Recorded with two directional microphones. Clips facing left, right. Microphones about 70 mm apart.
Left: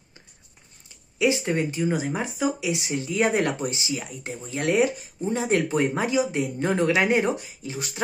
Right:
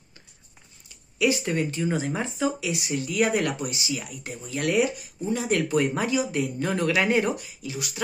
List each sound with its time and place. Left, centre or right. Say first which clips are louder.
0.8 s speech: left 1 dB; left